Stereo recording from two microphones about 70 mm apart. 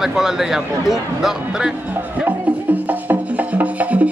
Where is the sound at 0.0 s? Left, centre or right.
Centre.